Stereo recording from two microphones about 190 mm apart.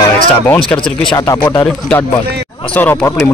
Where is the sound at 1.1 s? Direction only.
20° left (ahead or behind).